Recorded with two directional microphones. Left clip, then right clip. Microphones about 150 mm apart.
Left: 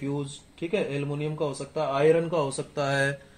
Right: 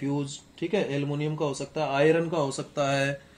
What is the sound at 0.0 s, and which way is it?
Speech, 20° right (ahead or behind).